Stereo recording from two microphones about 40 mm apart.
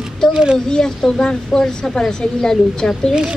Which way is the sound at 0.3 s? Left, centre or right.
Right.